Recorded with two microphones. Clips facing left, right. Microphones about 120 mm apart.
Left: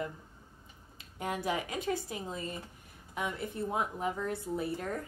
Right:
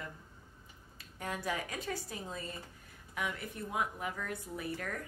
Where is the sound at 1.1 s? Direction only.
20° left (ahead or behind).